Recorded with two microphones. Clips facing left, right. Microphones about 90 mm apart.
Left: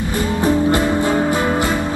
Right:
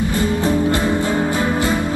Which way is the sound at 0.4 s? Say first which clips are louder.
Left 5 dB; 20° left (ahead or behind).